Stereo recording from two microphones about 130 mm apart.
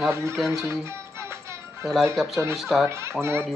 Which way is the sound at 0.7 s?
20° right (ahead or behind).